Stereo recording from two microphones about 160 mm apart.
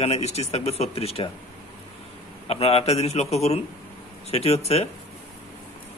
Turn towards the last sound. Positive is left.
turn(degrees=40)  # may be behind; listen again after turning